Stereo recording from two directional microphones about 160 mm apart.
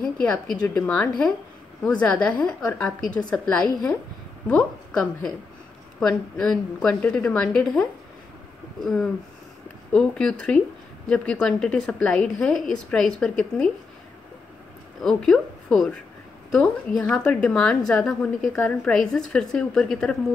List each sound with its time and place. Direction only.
0.0 s a woman's voice: 5° left (ahead or behind)
8.8 s speech: centre (ahead or behind)
15.0 s speech: centre (ahead or behind)